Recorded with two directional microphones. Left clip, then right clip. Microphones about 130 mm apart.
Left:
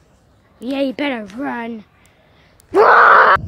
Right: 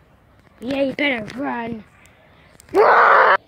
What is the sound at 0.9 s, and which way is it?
Speech, 25° left (ahead or behind).